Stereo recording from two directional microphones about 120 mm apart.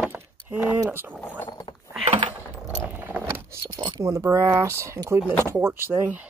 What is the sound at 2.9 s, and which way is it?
Keys jangling, 15° right (ahead or behind).